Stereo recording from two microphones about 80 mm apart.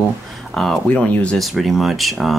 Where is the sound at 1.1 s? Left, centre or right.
Centre.